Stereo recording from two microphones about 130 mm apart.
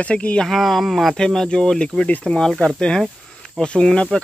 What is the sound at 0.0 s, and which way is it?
Speech, 10° left (ahead or behind).